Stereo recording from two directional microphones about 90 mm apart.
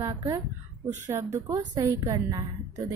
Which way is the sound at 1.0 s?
35° right (ahead or behind).